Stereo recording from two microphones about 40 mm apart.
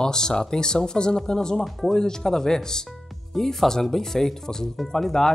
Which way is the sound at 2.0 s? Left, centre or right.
Centre.